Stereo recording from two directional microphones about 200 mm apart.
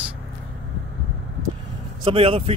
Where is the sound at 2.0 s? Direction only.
30° right (ahead or behind).